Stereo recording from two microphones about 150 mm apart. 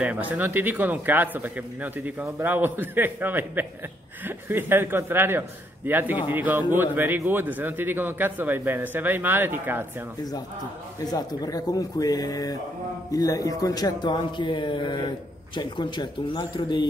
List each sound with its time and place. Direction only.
0.0 s a man's voice: 10° right (ahead or behind)
11.1 s speech: 25° left (ahead or behind)